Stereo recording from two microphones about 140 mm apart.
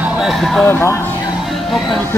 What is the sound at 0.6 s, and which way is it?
Speech, 15° left (ahead or behind).